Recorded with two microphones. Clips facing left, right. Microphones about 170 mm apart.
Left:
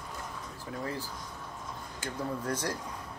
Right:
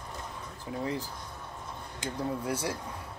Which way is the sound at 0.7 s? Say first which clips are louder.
Right 3 dB; 20° right (ahead or behind).